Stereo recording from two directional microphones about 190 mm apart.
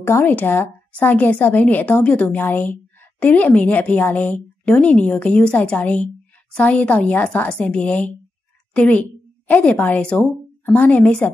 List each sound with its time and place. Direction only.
0.0 s a woman's voice: 10° left (ahead or behind)